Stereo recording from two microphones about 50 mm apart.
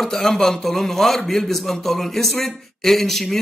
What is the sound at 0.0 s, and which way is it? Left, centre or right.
A man's voice, centre.